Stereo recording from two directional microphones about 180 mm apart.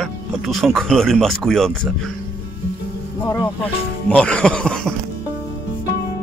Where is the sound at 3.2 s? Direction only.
20° left (ahead or behind).